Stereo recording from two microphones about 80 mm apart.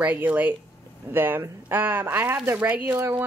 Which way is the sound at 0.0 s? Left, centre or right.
Right.